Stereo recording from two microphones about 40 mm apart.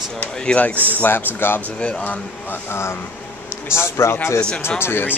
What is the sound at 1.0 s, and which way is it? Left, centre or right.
Speech, left.